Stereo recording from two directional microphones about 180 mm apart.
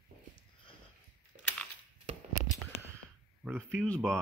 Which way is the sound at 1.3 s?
50° right (ahead or behind).